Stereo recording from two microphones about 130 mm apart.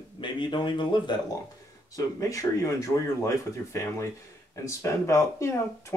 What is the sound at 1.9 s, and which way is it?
Speech, 25° left (ahead or behind).